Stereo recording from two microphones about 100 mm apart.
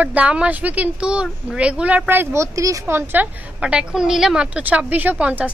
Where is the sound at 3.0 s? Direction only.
15° right (ahead or behind).